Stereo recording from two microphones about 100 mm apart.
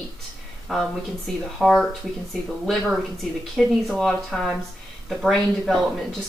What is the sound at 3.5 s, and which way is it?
Speech, 5° left (ahead or behind).